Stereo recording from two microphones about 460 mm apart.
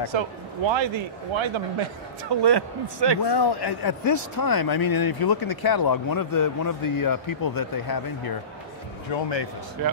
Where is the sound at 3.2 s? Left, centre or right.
Left.